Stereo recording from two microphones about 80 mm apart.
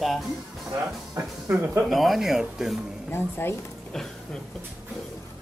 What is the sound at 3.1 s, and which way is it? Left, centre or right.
Speech, left.